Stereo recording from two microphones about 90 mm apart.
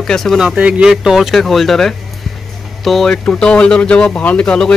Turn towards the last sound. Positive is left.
turn(degrees=10)  # may be behind; listen again after turning